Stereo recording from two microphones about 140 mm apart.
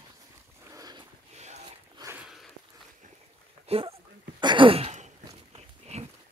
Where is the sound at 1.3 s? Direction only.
50° right (ahead or behind).